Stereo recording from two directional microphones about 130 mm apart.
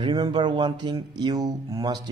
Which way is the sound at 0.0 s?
35° right (ahead or behind).